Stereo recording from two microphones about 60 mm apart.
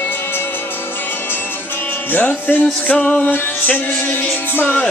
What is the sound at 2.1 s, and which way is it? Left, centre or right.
Music, left.